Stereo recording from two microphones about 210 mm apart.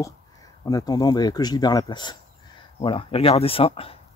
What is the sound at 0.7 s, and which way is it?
Speech, 15° left (ahead or behind).